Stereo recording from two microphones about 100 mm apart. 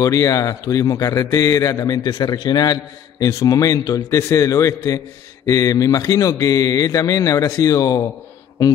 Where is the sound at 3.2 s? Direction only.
35° left (ahead or behind).